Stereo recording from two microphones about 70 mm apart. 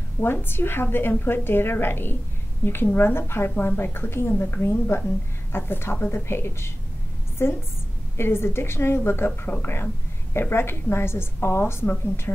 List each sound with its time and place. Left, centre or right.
0.2 s a woman's voice: left